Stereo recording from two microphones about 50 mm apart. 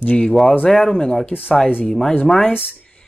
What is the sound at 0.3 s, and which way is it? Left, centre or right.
Speech, centre.